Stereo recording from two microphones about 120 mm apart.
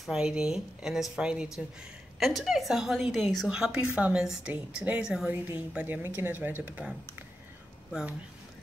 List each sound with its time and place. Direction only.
0.0 s a woman's voice: 5° right (ahead or behind)